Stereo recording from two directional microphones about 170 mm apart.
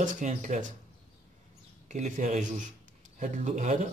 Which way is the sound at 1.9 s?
45° right (ahead or behind).